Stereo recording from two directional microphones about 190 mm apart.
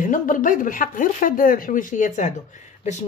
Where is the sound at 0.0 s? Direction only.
45° left (ahead or behind).